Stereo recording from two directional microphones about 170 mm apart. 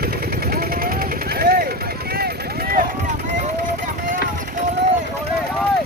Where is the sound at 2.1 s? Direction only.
65° right (ahead or behind).